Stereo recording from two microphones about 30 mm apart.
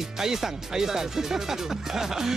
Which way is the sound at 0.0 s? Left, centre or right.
Centre.